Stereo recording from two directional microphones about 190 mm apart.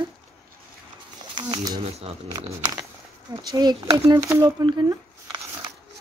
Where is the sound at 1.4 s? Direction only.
25° right (ahead or behind).